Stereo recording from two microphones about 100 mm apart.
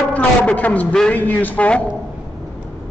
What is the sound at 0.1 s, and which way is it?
A man's voice, 15° left (ahead or behind).